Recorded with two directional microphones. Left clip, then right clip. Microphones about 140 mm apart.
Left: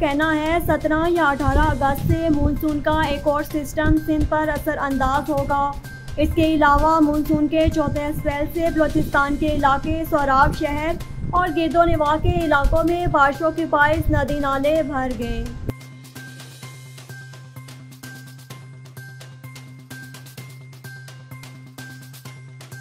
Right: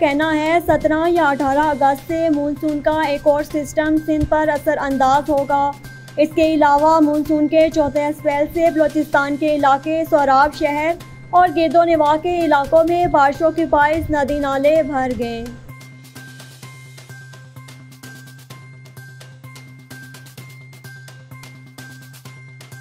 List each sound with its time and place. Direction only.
0.0 s a woman's voice: 20° right (ahead or behind)